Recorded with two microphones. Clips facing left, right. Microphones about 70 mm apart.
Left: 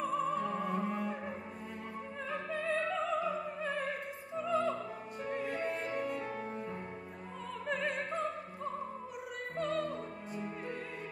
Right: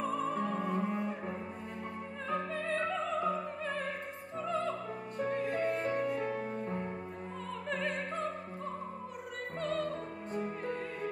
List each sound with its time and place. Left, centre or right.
0.0 s music: centre
2.5 s music: centre
4.5 s music: centre
5.8 s music: right
7.6 s music: centre
9.6 s opera: centre
10.3 s music: right